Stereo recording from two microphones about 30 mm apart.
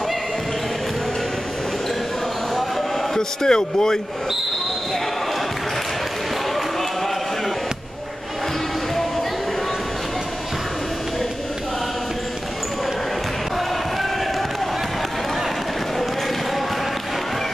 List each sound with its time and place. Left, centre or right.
3.2 s a man's voice: left
6.5 s run: centre